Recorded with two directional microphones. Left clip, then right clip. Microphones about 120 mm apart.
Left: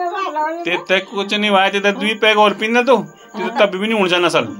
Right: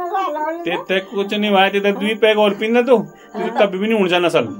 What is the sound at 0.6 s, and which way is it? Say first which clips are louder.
Speech: left 3 dB; 25° right (ahead or behind).